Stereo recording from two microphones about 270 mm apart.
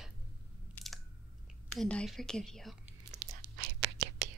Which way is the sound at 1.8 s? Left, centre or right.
Centre.